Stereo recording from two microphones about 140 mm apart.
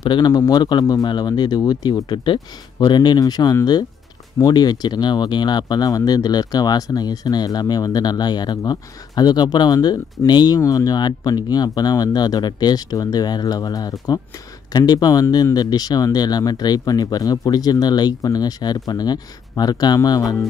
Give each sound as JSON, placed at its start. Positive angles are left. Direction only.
{"t": 0.0, "sound": "speech", "side_deg": 30}